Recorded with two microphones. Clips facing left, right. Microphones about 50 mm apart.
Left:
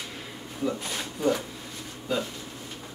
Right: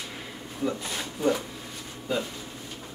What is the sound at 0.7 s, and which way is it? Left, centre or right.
Speech, centre.